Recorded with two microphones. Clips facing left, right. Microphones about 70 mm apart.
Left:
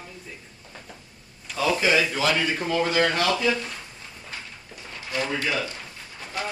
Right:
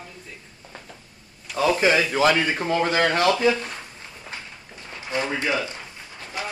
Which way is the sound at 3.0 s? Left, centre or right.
Centre.